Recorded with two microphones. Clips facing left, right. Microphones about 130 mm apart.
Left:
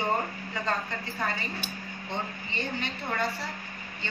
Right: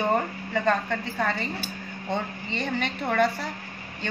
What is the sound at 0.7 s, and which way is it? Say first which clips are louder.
A woman's voice: right 6 dB; 75° right (ahead or behind).